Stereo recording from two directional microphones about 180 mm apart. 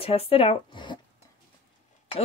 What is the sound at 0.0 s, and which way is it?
Speech, 30° left (ahead or behind).